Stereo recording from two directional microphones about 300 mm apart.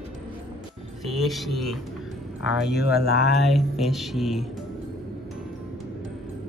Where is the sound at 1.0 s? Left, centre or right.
Centre.